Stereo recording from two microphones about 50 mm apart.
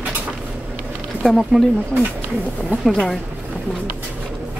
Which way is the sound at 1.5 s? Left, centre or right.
Centre.